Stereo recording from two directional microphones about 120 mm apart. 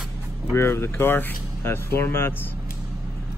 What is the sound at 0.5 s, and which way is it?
Speech, 20° left (ahead or behind).